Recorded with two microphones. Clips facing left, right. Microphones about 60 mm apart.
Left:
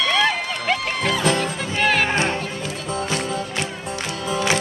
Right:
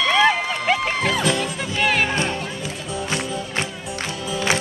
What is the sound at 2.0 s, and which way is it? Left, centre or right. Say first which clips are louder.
Music: left 2 dB; left.